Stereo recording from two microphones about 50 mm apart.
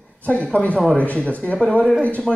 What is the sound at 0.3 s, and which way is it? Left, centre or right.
Speech, left.